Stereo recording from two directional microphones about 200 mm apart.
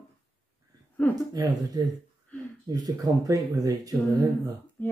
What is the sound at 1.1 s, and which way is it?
Speech, 20° right (ahead or behind).